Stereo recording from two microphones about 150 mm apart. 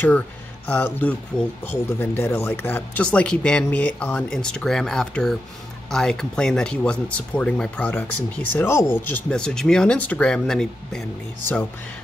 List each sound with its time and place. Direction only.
0.7 s speech: 10° left (ahead or behind)
9.1 s speech: 5° left (ahead or behind)